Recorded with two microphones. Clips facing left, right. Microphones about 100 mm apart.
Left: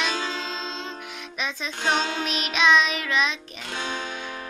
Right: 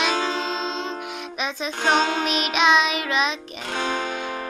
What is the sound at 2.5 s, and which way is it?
Music, 15° right (ahead or behind).